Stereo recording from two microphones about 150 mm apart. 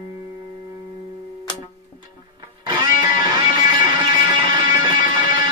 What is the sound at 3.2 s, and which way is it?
Music, 30° right (ahead or behind).